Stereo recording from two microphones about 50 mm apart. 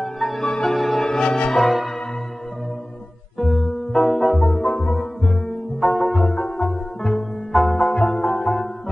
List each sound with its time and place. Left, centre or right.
0.0 s music: centre
0.5 s music: centre
3.3 s music: centre
4.6 s music: left
5.2 s music: centre
7.6 s music: left
8.1 s music: centre